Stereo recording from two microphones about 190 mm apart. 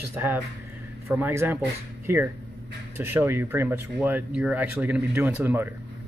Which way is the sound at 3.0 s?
10° right (ahead or behind).